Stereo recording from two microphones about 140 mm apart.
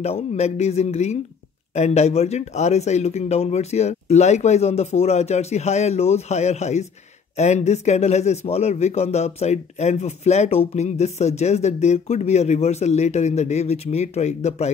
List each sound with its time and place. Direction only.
0.0 s a man's voice: 50° left (ahead or behind)